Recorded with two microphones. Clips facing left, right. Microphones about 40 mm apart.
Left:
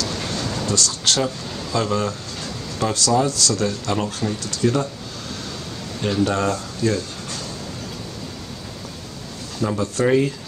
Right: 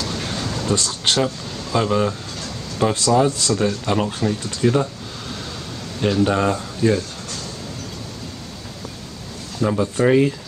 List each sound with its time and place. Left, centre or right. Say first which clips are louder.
0.1 s a sound: even; centre
0.7 s speech: right 2 dB; right
5.9 s speech: right 3 dB; centre
9.7 s speech: right 2 dB; centre